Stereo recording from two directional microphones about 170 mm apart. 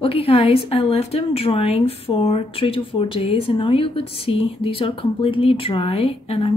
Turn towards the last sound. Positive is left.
turn(degrees=35)  # may be behind; listen again after turning